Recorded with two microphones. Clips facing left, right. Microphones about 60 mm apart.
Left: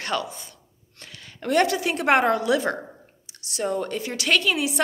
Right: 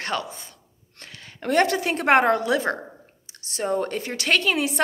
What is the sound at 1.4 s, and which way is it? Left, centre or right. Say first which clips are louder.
A woman's voice: even; right.